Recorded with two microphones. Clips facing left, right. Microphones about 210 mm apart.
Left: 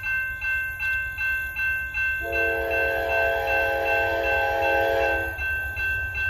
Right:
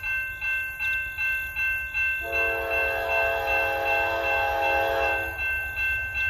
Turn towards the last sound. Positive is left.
turn(degrees=15)  # may be behind; listen again after turning